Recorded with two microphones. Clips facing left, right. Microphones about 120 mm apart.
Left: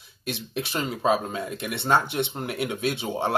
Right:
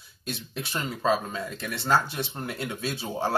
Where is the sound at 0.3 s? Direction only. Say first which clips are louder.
Left 4 dB; 25° left (ahead or behind).